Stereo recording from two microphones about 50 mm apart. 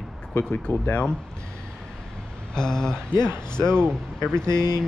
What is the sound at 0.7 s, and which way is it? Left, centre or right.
Speech, left.